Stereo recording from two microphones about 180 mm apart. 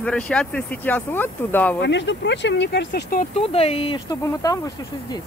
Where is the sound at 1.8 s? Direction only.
80° left; by 3.2 s 55° left (ahead or behind).